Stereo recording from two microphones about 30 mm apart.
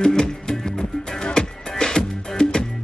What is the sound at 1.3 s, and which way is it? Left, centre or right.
Music, left.